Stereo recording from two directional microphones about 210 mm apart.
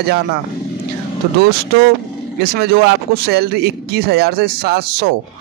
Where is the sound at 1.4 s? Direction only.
50° right (ahead or behind).